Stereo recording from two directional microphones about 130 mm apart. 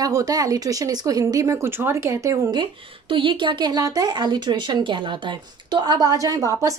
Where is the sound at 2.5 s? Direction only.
35° right (ahead or behind).